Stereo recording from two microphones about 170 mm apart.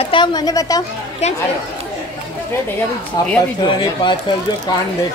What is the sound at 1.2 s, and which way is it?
Speech, 40° left (ahead or behind).